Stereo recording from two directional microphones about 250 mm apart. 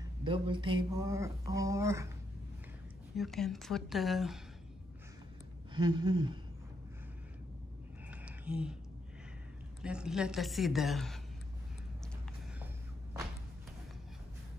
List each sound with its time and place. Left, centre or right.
0.2 s speech: centre
3.2 s a woman's voice: centre
5.8 s speech: centre
8.1 s a sound: centre
9.8 s a woman's voice: centre